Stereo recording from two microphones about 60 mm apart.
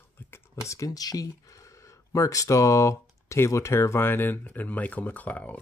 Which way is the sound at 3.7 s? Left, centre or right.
Left.